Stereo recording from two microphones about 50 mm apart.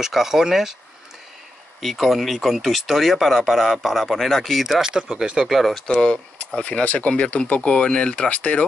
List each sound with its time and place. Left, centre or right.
0.0 s speech: centre
1.8 s speech: centre
5.5 s speech: centre
5.9 s speech: left